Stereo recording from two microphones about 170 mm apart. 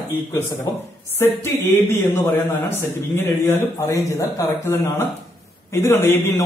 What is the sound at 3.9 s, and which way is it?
Speech, 15° left (ahead or behind).